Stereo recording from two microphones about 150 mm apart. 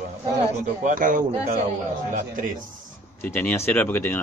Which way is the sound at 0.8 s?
60° right (ahead or behind).